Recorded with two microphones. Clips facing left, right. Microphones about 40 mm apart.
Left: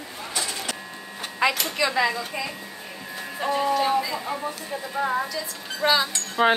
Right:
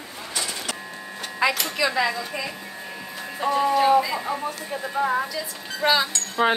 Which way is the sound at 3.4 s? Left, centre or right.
Centre.